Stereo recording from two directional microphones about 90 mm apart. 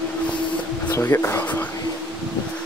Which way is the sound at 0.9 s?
30° left (ahead or behind).